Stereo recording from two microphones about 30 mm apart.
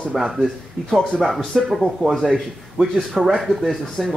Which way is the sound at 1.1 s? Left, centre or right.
Centre.